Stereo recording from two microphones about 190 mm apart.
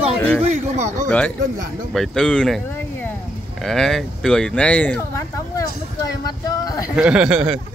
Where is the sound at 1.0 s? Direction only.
10° left (ahead or behind).